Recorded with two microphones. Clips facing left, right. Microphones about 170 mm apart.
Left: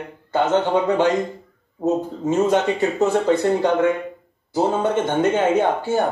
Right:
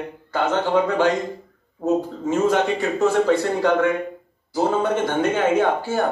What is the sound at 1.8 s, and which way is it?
Speech, 25° left (ahead or behind).